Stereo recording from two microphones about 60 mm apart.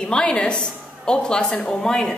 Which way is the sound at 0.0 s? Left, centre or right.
Centre.